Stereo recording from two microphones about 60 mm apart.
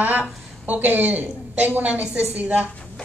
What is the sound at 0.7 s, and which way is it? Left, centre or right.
A woman's voice, right.